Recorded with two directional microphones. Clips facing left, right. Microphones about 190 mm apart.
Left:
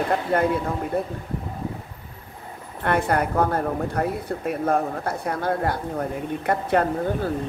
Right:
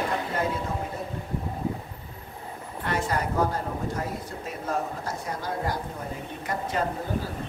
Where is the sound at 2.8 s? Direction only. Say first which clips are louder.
Left 6 dB; 60° left (ahead or behind).